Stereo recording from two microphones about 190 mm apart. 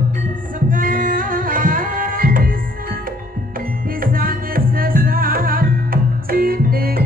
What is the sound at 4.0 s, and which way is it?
Music, 50° right (ahead or behind).